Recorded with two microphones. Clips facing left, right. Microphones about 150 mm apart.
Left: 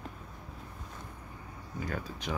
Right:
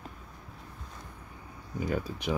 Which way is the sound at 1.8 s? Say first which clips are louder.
Right 6 dB; 10° right (ahead or behind).